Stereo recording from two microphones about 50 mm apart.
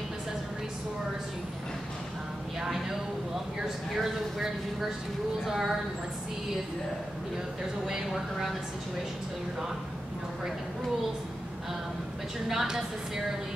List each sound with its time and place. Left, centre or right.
2.6 s a sound: centre
3.6 s a woman's voice: centre
7.8 s speech: centre
12.4 s a woman's voice: centre